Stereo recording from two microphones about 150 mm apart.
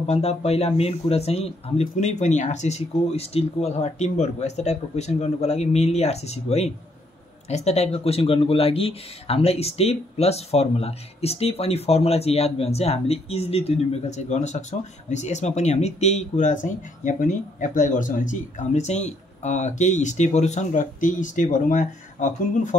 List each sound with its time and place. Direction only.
0.0 s speech: 45° left (ahead or behind)